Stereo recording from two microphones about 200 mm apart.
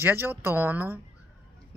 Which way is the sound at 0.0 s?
10° right (ahead or behind).